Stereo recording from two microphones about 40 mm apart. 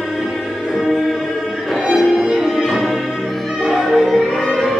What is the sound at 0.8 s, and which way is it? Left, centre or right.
Music, centre.